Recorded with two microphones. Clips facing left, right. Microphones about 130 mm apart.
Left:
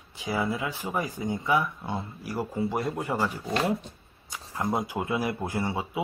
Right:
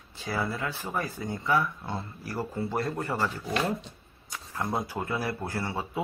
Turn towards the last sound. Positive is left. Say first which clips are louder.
# left 3 dB
turn(degrees=10)  # may be behind; listen again after turning